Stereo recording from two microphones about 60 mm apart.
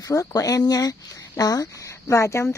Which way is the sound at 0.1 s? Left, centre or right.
Left.